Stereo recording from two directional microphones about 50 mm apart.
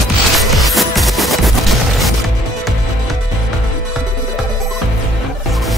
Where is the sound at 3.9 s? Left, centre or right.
Centre.